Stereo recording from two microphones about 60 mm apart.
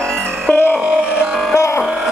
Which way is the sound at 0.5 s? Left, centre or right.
Left.